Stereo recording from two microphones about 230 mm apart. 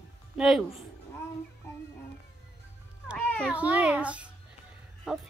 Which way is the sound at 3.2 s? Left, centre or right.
Centre.